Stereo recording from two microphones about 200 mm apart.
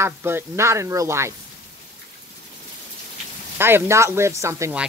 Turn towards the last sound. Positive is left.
turn(degrees=-15)  # may be behind; listen again after turning